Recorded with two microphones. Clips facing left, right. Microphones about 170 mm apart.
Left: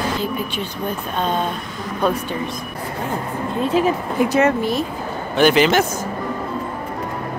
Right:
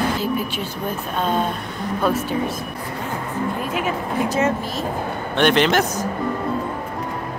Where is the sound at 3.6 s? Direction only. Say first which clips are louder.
Left 7 dB; 30° left (ahead or behind).